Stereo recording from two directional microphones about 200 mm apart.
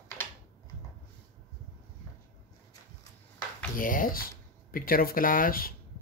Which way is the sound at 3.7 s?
45° left (ahead or behind).